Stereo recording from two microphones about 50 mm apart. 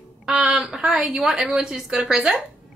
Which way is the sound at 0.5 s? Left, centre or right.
Centre.